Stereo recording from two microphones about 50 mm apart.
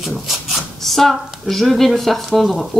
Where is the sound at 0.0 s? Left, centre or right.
Centre.